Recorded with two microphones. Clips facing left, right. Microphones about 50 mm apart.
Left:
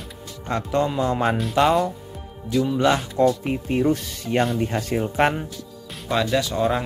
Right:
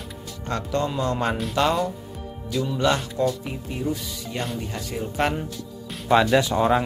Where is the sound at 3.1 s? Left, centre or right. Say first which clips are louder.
Left 5 dB; left.